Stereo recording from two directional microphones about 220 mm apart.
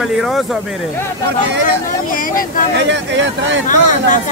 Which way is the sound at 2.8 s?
55° right (ahead or behind).